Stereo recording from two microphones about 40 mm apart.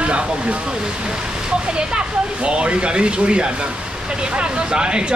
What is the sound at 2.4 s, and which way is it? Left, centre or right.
Speech, right.